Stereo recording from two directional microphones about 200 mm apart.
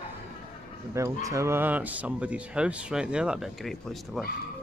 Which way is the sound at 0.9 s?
15° right (ahead or behind).